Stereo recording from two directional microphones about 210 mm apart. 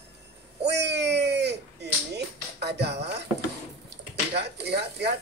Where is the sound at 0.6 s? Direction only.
55° right (ahead or behind).